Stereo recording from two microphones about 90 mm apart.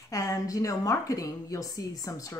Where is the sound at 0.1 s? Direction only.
40° left (ahead or behind).